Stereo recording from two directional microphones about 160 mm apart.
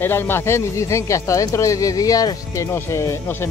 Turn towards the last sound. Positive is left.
turn(degrees=15)  # may be behind; listen again after turning